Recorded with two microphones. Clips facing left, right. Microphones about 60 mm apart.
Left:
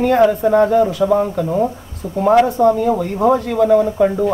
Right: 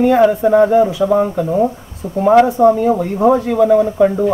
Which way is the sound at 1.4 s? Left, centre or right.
Centre.